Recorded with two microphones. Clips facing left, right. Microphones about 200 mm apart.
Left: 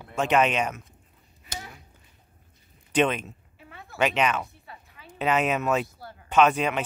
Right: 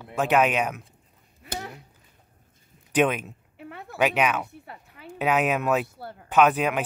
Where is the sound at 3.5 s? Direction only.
60° right (ahead or behind).